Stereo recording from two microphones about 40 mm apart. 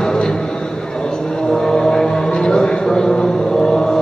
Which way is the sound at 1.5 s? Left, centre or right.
Centre.